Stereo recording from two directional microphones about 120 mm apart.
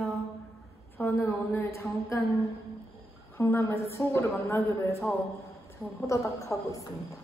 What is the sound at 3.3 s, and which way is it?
A woman's voice, 20° left (ahead or behind).